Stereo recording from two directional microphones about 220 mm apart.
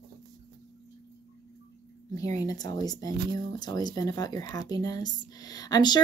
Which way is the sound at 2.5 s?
15° left (ahead or behind).